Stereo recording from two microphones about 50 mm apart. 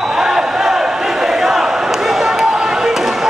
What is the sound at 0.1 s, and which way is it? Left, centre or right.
Crowd, centre.